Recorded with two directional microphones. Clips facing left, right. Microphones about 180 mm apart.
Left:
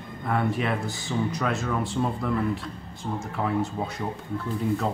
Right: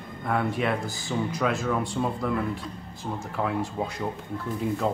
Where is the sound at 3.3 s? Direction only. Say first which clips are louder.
Left 1 dB; centre (ahead or behind).